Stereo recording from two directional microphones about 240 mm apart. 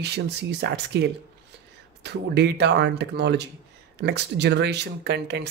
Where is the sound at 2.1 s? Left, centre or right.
Right.